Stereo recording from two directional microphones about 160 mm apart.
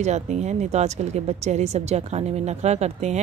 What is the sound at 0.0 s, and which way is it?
Speech, 45° right (ahead or behind).